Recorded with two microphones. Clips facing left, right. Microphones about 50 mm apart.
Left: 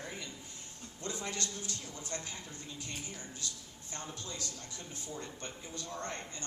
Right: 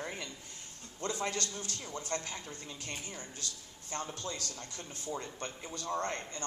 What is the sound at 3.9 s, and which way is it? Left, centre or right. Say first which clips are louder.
A man's voice: right 5 dB; right.